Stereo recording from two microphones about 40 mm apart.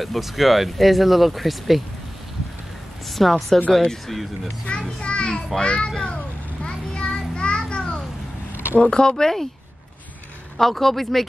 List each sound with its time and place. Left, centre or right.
0.0 s speech: centre
3.1 s speech: centre
4.7 s a child's voice: left
5.0 s children playing: left
5.6 s a child's voice: left
5.9 s speech: centre
6.6 s children playing: left
8.7 s speech: left
10.6 s speech: centre